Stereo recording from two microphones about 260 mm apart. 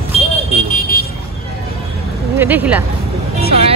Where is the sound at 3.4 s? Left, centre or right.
Right.